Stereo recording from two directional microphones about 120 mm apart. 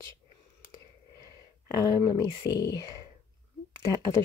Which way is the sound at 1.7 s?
30° left (ahead or behind).